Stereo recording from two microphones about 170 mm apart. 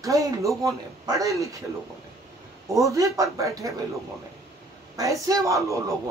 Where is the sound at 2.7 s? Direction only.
20° right (ahead or behind).